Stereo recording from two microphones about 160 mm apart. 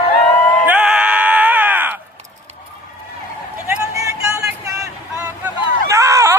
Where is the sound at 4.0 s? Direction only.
20° right (ahead or behind).